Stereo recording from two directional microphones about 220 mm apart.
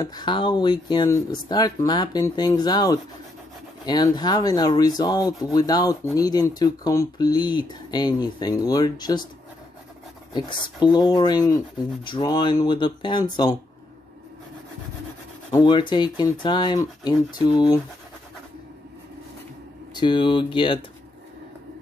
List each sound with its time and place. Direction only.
0.0 s rub: 20° left (ahead or behind)
3.8 s speech: 20° left (ahead or behind)
10.3 s rub: 20° left (ahead or behind)
15.5 s rub: 20° left (ahead or behind)
19.9 s rub: 20° left (ahead or behind)